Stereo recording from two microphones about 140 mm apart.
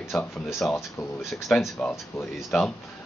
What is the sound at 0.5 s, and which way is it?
Speech, centre (ahead or behind).